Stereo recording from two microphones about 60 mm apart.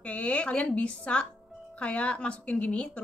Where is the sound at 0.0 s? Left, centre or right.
Centre.